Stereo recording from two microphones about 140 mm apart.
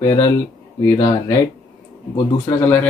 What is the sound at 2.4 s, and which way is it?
Speech, 15° left (ahead or behind).